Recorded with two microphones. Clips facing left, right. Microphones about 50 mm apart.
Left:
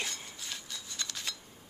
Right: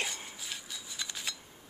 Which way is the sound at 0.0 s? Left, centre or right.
Centre.